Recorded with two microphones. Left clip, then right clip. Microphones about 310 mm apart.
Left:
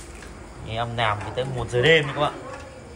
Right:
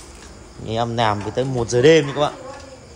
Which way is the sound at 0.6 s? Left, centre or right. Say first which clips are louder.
Right 5 dB; centre.